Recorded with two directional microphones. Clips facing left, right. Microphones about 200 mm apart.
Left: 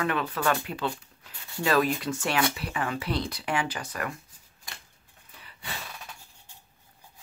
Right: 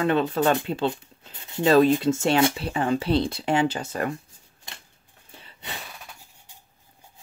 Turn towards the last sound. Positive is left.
turn(degrees=-30)  # may be behind; listen again after turning